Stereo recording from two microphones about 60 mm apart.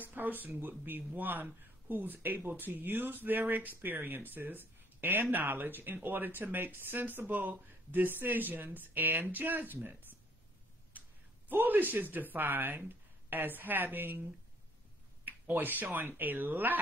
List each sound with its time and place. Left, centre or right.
0.0 s a sound: right
0.5 s speech: right
15.2 s speech: right